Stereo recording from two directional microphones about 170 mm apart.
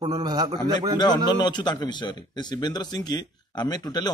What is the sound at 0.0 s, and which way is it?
Speech, 25° right (ahead or behind).